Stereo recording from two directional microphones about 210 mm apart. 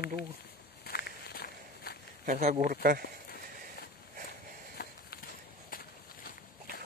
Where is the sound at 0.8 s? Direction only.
45° left (ahead or behind).